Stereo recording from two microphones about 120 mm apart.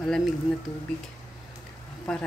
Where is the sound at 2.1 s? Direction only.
5° left (ahead or behind).